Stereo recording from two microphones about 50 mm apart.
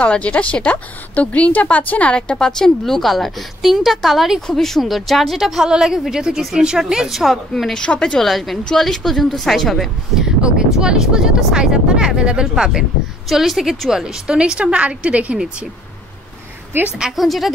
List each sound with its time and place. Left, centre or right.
0.0 s a woman's voice: left
2.1 s a woman's voice: centre
7.9 s a woman's voice: left
8.2 s a woman's voice: centre
10.1 s a woman's voice: centre
17.0 s a woman's voice: centre